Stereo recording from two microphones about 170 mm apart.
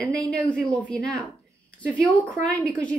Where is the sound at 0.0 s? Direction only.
5° left (ahead or behind).